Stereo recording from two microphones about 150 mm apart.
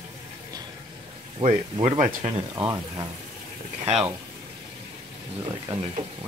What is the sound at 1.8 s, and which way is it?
Speech, 55° right (ahead or behind).